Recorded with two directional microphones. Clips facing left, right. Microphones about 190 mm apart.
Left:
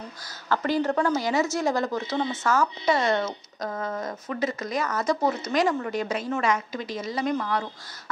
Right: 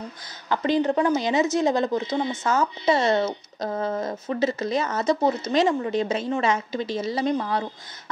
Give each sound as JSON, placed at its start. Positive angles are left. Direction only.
{"t": 0.5, "sound": "a woman's voice", "side_deg": -20}